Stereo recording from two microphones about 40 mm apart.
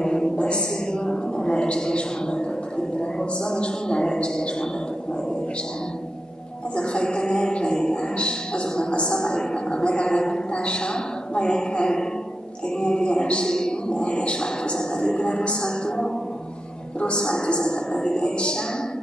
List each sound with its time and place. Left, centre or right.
0.0 s a sound: left
3.2 s speech: left
6.8 s speech: left